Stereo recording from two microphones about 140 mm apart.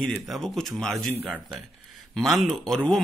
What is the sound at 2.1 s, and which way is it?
Speech, centre (ahead or behind).